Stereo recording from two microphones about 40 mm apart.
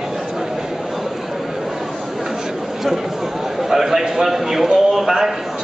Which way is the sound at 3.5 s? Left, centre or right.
Centre.